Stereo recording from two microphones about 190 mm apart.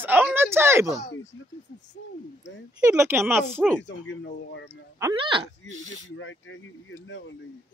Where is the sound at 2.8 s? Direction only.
15° right (ahead or behind).